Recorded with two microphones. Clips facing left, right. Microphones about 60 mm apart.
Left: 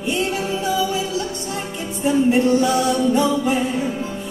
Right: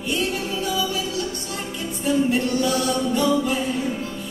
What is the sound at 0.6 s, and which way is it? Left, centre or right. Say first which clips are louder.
Music: left 4 dB; left.